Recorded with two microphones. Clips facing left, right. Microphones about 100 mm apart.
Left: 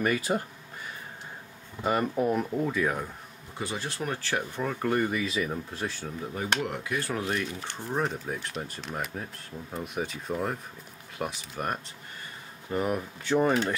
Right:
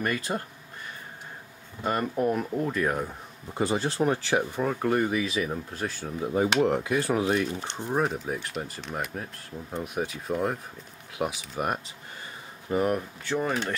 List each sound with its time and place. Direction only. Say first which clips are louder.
0.0 s speech: left 2 dB; 10° left (ahead or behind)
1.8 s speech: even; 5° left (ahead or behind)
3.5 s speech: right 8 dB; 35° right (ahead or behind)
4.3 s speech: right 4 dB; 10° right (ahead or behind)
6.0 s speech: right 8 dB; 20° right (ahead or behind)
8.0 s speech: right 2 dB; centre (ahead or behind)